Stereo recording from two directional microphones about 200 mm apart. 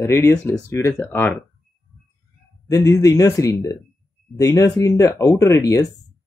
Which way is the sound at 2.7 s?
15° left (ahead or behind).